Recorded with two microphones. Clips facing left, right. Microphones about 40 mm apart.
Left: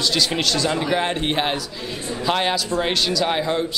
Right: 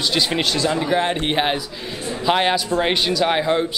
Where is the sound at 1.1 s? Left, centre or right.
Centre.